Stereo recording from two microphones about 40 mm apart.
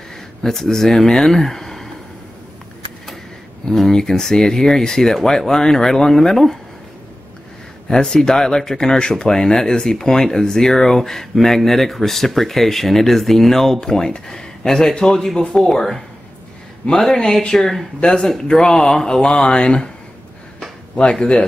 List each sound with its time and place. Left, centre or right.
0.1 s speech: centre
3.6 s speech: centre
7.9 s speech: centre
20.9 s speech: left